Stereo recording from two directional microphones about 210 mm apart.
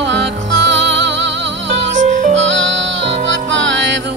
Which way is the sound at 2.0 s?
35° right (ahead or behind).